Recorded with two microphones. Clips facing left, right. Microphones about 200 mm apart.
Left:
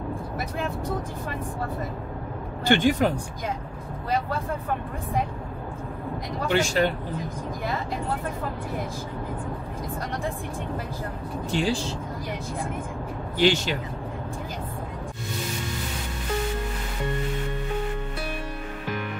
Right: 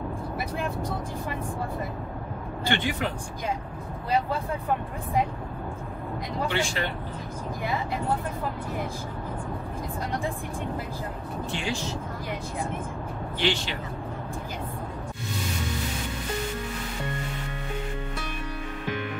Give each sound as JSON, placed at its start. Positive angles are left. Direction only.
{"t": 2.7, "sound": "speech", "side_deg": 45}
{"t": 6.5, "sound": "speech", "side_deg": 40}
{"t": 11.5, "sound": "speech", "side_deg": 35}
{"t": 13.4, "sound": "speech", "side_deg": 45}